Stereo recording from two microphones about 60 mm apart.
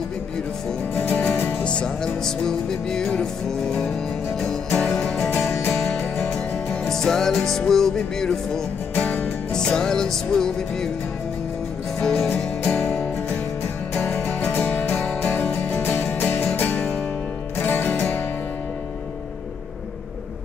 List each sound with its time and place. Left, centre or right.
0.9 s music: left
1.6 s music: centre
8.9 s music: left
9.5 s music: centre
12.0 s music: centre
13.9 s music: left